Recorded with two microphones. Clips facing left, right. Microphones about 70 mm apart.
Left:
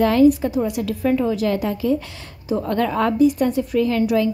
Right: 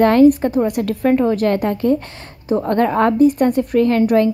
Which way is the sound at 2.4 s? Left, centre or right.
Right.